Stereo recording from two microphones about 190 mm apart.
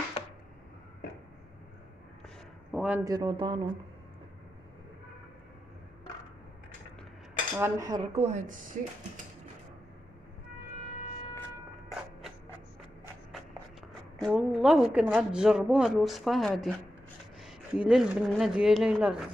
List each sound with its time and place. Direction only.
2.7 s speech: 5° right (ahead or behind)
3.0 s speech: 20° right (ahead or behind)
7.5 s speech: 15° right (ahead or behind)
8.1 s a woman's voice: 35° right (ahead or behind)
14.2 s speech: 5° right (ahead or behind)